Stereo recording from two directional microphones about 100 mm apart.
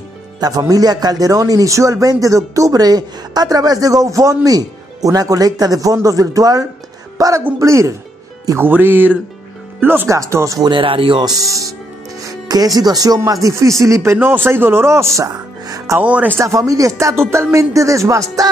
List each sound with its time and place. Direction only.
0.4 s a man's voice: 40° right (ahead or behind)
8.5 s speech: 20° right (ahead or behind)
10.6 s speech: 55° right (ahead or behind)
11.3 s a man's voice: 35° right (ahead or behind)
14.1 s speech: 20° right (ahead or behind); by 15.8 s 40° right (ahead or behind)
16.0 s speech: 15° right (ahead or behind)
16.3 s a man's voice: 30° right (ahead or behind)